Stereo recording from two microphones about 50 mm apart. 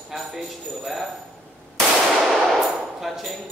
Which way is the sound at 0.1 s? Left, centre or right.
Centre.